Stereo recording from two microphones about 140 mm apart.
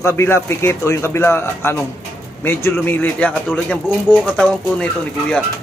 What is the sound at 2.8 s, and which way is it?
Speech, 10° left (ahead or behind).